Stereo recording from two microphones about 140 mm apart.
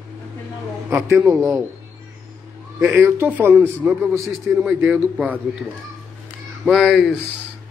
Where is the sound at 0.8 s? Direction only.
20° right (ahead or behind).